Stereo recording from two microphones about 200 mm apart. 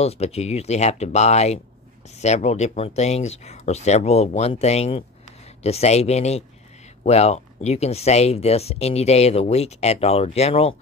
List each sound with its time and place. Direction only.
0.0 s speech: 30° left (ahead or behind)